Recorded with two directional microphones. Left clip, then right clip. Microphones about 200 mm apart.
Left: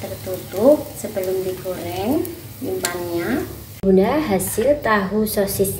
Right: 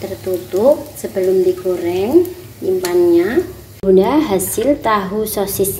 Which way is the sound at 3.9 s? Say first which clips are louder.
Right 5 dB; 30° right (ahead or behind).